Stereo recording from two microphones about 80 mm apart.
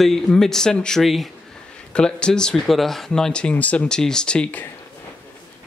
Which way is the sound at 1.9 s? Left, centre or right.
Centre.